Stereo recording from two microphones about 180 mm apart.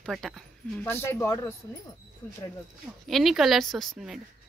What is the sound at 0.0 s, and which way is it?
Speech, centre (ahead or behind).